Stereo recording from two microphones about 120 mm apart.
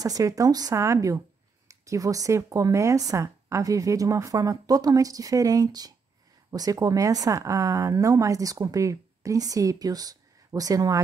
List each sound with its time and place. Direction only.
0.0 s speech: 30° right (ahead or behind)